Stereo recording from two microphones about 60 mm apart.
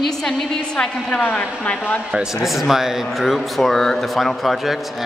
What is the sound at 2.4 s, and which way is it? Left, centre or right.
Speech, centre.